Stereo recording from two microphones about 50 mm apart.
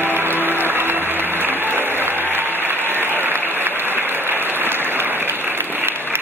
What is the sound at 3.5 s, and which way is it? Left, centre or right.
Applause, right.